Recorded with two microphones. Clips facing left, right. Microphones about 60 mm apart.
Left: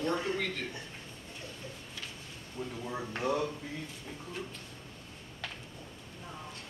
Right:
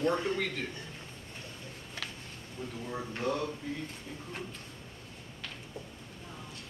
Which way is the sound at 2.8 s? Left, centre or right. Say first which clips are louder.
Even; centre.